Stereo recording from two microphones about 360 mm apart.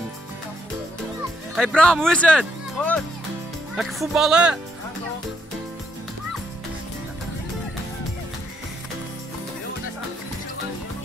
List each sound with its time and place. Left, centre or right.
1.5 s speech: centre